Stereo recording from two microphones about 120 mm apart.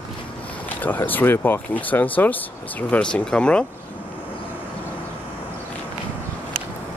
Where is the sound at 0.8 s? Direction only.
15° left (ahead or behind).